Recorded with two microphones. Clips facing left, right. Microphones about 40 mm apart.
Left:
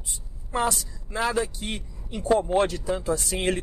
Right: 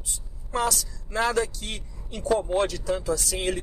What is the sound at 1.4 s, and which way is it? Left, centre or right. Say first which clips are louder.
Speech: left 1 dB; left.